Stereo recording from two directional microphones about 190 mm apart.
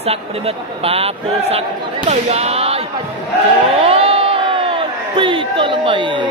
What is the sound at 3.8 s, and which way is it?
Crowd, 30° right (ahead or behind).